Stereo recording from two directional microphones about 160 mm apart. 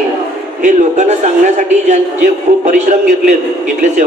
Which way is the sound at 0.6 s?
50° right (ahead or behind).